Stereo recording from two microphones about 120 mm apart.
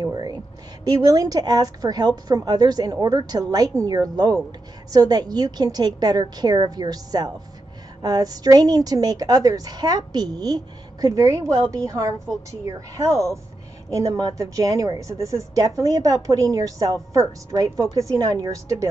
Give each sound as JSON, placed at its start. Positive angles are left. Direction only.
{"t": 0.0, "sound": "a woman's voice", "side_deg": -35}